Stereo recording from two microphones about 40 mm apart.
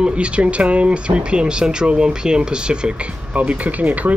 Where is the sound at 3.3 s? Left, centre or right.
Right.